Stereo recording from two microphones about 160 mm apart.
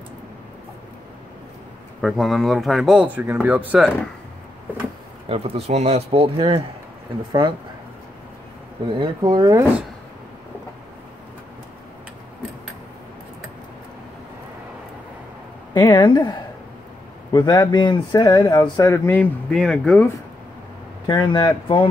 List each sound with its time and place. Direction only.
2.0 s speech: centre (ahead or behind)
5.3 s speech: 40° right (ahead or behind)
8.8 s speech: 30° right (ahead or behind)
15.7 s a man's voice: 25° left (ahead or behind)
19.5 s speech: centre (ahead or behind)
21.1 s a man's voice: 30° left (ahead or behind)